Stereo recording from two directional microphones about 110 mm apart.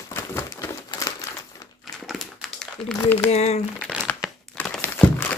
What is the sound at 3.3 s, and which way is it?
Crumpling, 85° left.